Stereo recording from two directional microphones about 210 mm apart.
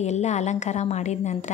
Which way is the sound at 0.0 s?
35° left (ahead or behind).